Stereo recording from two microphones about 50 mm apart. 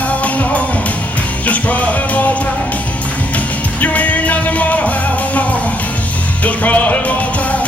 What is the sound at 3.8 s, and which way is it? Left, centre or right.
Music, left.